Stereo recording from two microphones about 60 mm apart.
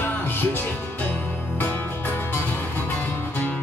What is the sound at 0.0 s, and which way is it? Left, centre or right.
Music, left.